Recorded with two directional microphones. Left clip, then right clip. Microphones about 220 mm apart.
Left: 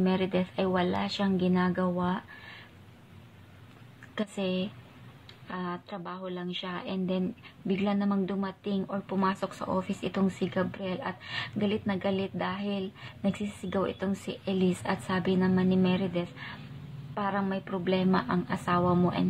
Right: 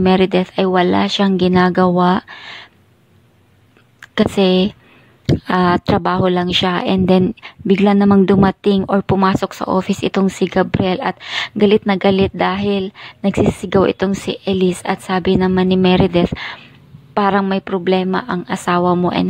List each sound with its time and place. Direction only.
0.0 s speech: 45° right (ahead or behind)
4.1 s a woman's voice: 45° right (ahead or behind)